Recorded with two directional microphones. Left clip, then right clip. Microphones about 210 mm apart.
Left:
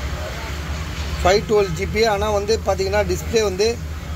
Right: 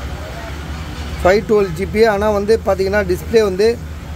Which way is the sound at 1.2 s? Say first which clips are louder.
Right 4 dB; 35° right (ahead or behind).